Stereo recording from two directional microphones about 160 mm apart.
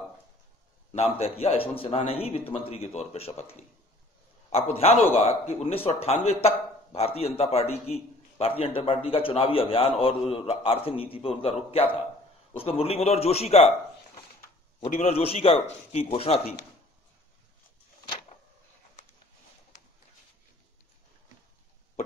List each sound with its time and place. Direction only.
0.9 s a man's voice: 40° left (ahead or behind)
15.0 s a man's voice: 40° left (ahead or behind)